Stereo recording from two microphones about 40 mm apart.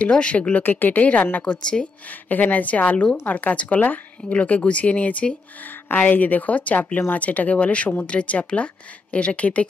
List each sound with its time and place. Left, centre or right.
0.0 s speech: left
0.6 s speech: left
1.4 s speech: left
2.0 s speech: left
5.9 s speech: left